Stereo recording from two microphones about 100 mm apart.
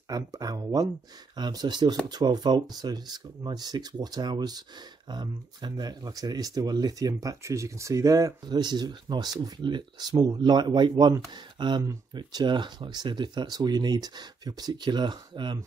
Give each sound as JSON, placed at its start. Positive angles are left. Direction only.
{"t": 0.1, "sound": "speech", "side_deg": -40}